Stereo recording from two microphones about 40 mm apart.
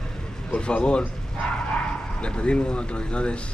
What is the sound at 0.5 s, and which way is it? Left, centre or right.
Speech, left.